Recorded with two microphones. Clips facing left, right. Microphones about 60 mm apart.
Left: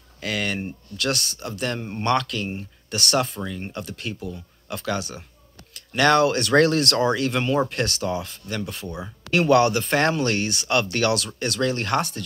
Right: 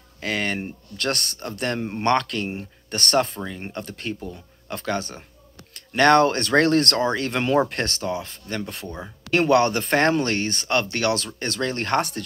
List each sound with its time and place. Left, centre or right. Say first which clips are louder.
0.2 s speech: right 1 dB; right
0.9 s speech: even; right
1.8 s speech: right 3 dB; centre
2.0 s speech: right 1 dB; right
3.4 s speech: left 1 dB; right
3.7 s speech: right 1 dB; right